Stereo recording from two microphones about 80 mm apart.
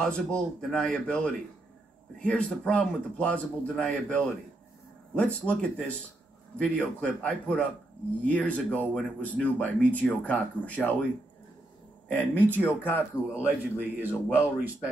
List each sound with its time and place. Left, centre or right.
0.0 s speech: centre
12.1 s speech: centre
13.3 s a man's voice: right